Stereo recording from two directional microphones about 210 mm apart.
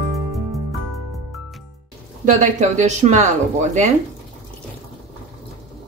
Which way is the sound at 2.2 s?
35° right (ahead or behind).